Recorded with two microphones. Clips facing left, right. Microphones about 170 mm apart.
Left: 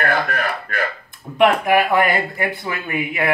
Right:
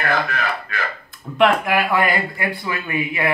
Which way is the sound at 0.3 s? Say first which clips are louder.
Left 1 dB; 55° left (ahead or behind).